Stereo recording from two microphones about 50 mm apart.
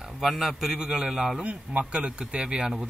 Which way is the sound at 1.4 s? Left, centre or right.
Right.